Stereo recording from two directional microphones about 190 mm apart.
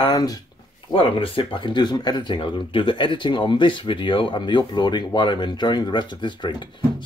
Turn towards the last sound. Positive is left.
turn(degrees=25)  # may be behind; listen again after turning